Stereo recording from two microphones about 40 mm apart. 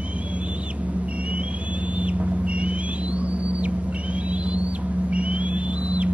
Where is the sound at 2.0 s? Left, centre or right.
Right.